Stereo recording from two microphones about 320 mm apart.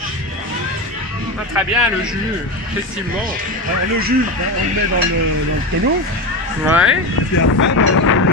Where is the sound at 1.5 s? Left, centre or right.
Centre.